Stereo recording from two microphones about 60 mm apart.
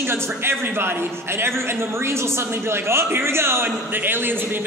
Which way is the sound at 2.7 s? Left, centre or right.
Right.